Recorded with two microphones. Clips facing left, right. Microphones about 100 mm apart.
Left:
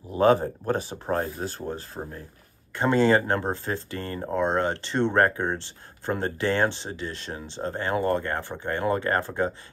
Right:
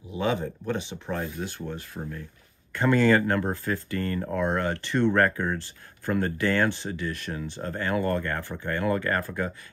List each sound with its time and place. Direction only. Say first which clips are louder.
0.1 s speech: left 7 dB; 45° left (ahead or behind)
2.7 s speech: left 1 dB; 20° left (ahead or behind)